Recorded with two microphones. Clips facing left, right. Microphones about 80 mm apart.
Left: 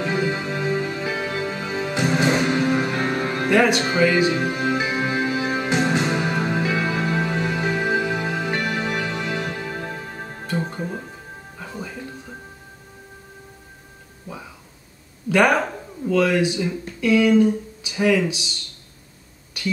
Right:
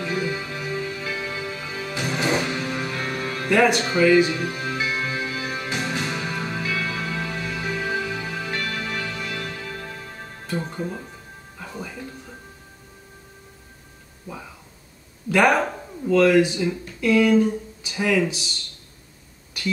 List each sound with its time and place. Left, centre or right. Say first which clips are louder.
0.0 s music: left 3 dB; left
10.8 s music: left 1 dB; centre
15.2 s a sound: left 1 dB; centre
16.2 s speech: right 3 dB; centre